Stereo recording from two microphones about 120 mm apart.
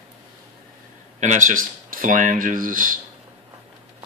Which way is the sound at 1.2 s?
90° right.